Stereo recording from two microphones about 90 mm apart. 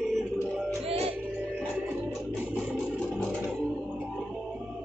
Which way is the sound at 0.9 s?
90° right.